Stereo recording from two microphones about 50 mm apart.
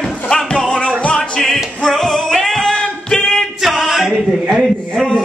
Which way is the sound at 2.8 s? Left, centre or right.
Centre.